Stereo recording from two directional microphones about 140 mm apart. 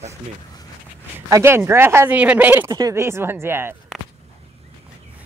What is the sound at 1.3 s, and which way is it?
Speech, 20° right (ahead or behind).